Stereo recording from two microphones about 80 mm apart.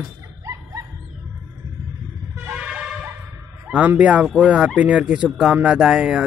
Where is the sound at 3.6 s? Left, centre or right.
Centre.